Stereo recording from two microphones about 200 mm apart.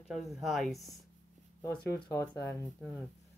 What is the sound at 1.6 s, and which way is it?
Speech, 10° left (ahead or behind).